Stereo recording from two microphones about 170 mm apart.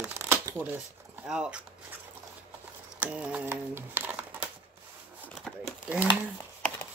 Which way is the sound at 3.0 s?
10° right (ahead or behind).